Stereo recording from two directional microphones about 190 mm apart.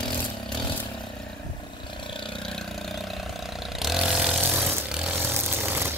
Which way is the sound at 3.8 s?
Centre (ahead or behind).